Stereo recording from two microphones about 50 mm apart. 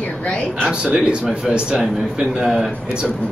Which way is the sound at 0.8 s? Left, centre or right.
Centre.